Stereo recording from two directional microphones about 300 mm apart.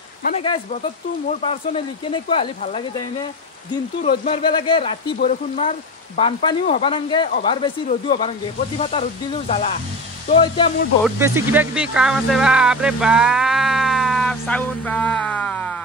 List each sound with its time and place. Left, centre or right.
0.2 s speech: left
11.1 s speech: centre